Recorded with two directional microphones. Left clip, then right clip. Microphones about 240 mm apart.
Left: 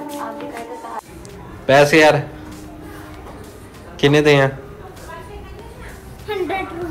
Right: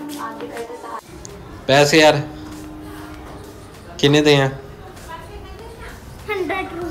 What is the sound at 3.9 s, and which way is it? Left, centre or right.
Speech, centre.